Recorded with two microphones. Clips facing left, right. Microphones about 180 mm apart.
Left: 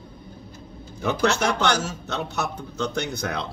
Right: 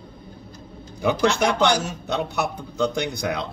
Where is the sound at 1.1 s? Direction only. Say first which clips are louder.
Right 2 dB; 15° right (ahead or behind).